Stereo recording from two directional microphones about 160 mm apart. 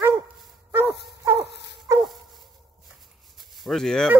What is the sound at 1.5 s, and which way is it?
Dog, 90° left.